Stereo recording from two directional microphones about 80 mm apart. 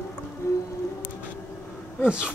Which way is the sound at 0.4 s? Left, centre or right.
Left.